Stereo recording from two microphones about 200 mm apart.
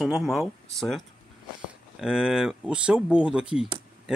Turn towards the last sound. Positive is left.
turn(degrees=-5)  # may be behind; listen again after turning